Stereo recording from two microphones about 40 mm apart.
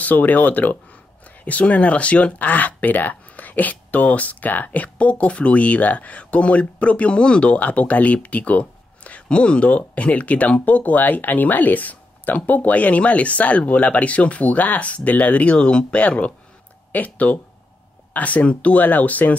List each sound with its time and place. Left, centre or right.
0.0 s speech: left